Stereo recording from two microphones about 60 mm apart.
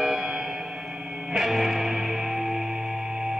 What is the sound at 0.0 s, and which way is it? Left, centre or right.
Music, centre.